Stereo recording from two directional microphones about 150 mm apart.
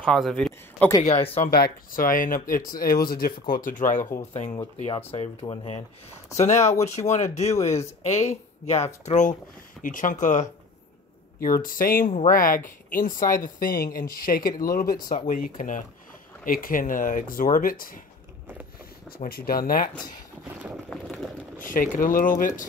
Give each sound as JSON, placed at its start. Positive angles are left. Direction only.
{"t": 0.0, "sound": "speech", "side_deg": 0}
{"t": 1.0, "sound": "speech", "side_deg": 40}
{"t": 1.4, "sound": "speech", "side_deg": 80}
{"t": 3.5, "sound": "speech", "side_deg": 65}
{"t": 4.0, "sound": "speech", "side_deg": 20}
{"t": 4.9, "sound": "a woman's voice", "side_deg": 40}
{"t": 11.4, "sound": "speech", "side_deg": 70}
{"t": 15.0, "sound": "speech", "side_deg": 65}
{"t": 19.0, "sound": "speech", "side_deg": 90}
{"t": 20.4, "sound": "speech", "side_deg": -5}
{"t": 21.5, "sound": "speech", "side_deg": 65}